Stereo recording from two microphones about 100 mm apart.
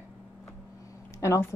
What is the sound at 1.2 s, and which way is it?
Speech, 30° left (ahead or behind).